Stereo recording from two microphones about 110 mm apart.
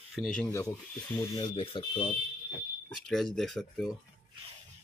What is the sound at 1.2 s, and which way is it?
Speech, 40° left (ahead or behind).